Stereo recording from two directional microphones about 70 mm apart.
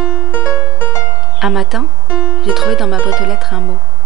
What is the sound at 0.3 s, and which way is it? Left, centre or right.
Music, left.